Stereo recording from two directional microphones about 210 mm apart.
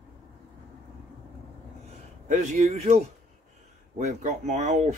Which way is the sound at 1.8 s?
30° right (ahead or behind).